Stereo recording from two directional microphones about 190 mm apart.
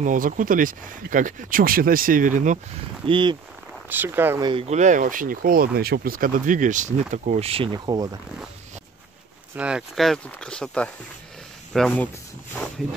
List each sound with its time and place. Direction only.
0.0 s speech: 45° right (ahead or behind)
3.1 s speech: 25° right (ahead or behind)
3.9 s speech: 10° right (ahead or behind)
4.5 s speech: 30° right (ahead or behind)
9.6 s speech: 5° right (ahead or behind)